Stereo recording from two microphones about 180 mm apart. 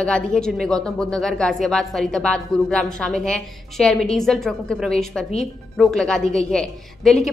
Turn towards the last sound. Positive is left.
turn(degrees=5)  # may be behind; listen again after turning